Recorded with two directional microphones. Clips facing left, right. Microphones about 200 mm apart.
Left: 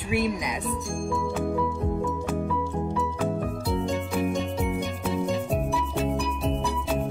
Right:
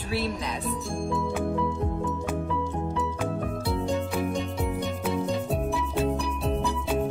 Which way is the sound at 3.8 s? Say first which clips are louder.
Even; centre (ahead or behind).